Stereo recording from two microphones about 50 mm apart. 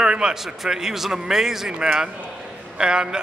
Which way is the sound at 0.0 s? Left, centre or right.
Centre.